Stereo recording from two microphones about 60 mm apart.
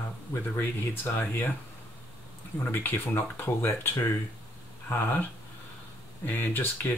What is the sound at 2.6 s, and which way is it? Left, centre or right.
Speech, left.